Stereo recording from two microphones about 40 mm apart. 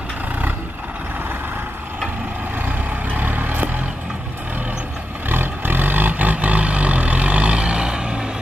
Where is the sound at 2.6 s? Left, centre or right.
Right.